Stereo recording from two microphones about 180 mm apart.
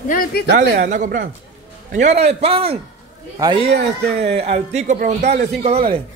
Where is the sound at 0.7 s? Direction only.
45° right (ahead or behind); by 3.6 s 25° right (ahead or behind).